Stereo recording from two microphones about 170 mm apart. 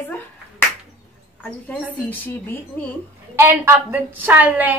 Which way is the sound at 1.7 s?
10° left (ahead or behind).